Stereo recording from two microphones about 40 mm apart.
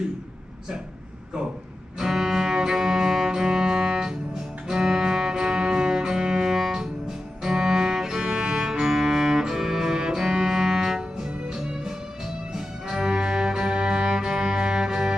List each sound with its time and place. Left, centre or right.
2.0 s music: centre